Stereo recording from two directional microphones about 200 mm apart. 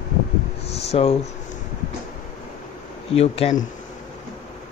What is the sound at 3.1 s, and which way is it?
Speech, 30° left (ahead or behind).